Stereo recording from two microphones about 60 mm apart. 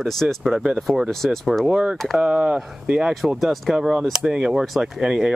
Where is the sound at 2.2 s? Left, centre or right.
Centre.